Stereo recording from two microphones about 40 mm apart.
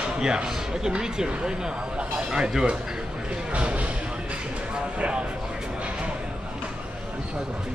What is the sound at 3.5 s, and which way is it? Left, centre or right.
Speech, right.